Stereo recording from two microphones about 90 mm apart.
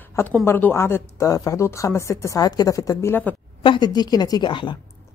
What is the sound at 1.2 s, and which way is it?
Speech, 40° left (ahead or behind).